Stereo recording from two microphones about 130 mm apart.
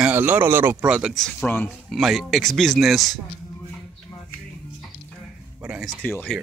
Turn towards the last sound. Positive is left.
turn(degrees=10)  # may be behind; listen again after turning